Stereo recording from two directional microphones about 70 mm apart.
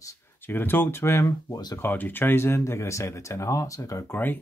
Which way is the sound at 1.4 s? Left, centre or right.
Left.